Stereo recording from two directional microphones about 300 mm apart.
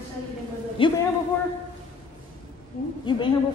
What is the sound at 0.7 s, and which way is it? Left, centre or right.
Speech, centre.